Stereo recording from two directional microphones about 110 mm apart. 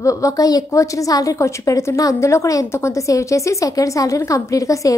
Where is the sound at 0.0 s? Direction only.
30° left (ahead or behind).